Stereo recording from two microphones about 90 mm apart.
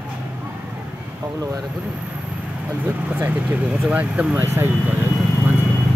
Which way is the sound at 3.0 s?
20° right (ahead or behind).